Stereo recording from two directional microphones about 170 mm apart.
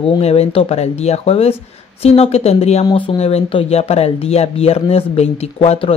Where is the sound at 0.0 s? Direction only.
35° left (ahead or behind).